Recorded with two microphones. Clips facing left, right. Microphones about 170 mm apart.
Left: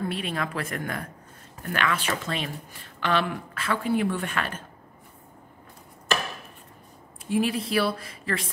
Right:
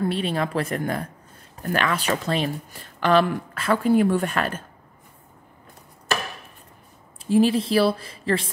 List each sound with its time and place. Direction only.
0.1 s speech: 30° right (ahead or behind)
7.2 s speech: 30° right (ahead or behind)